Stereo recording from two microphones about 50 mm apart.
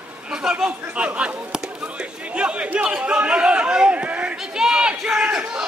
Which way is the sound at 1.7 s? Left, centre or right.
Right.